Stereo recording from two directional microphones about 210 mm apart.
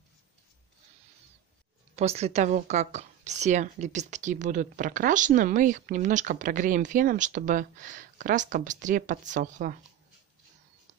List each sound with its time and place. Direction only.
2.0 s a woman's voice: 30° right (ahead or behind)